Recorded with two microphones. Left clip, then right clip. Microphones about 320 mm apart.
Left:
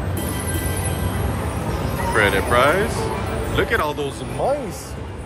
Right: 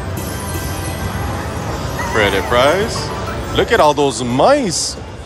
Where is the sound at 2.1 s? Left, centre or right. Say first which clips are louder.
Right 3 dB; centre.